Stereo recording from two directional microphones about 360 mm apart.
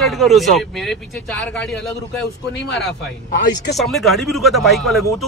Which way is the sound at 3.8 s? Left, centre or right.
Centre.